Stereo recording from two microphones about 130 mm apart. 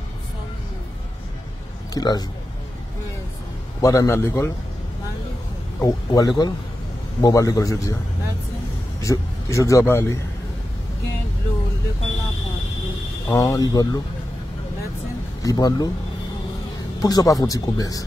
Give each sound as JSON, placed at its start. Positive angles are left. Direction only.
{"t": 2.0, "sound": "speech", "side_deg": 30}
{"t": 3.8, "sound": "a man's voice", "side_deg": 25}
{"t": 5.8, "sound": "a man's voice", "side_deg": 25}
{"t": 9.0, "sound": "a man's voice", "side_deg": 25}
{"t": 13.3, "sound": "a man's voice", "side_deg": 25}
{"t": 15.4, "sound": "a man's voice", "side_deg": 30}
{"t": 17.0, "sound": "a man's voice", "side_deg": 30}